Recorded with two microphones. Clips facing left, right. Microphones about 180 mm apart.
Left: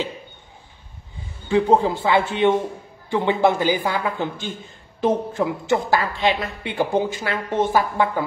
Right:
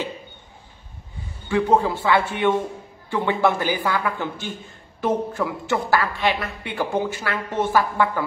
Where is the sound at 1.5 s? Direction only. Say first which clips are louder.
Left 2 dB; 25° left (ahead or behind).